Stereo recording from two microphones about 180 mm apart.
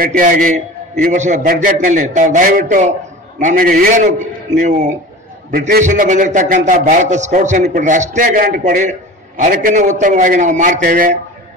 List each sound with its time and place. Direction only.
0.0 s a man's voice: 50° right (ahead or behind)